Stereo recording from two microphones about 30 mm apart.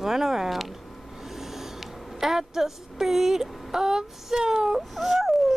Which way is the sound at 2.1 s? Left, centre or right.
Centre.